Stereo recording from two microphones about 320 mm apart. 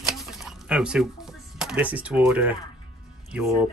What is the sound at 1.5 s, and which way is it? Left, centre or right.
Speech, centre.